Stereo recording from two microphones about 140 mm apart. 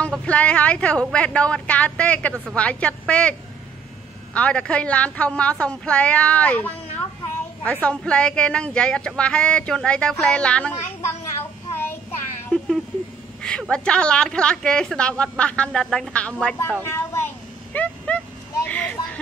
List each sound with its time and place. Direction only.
0.0 s a woman's voice: 10° left (ahead or behind)
11.7 s child singing: 15° left (ahead or behind)
12.4 s a sound: centre (ahead or behind)
13.4 s a woman's voice: 5° left (ahead or behind)
16.8 s speech: 20° left (ahead or behind)
17.7 s a sound: 10° left (ahead or behind)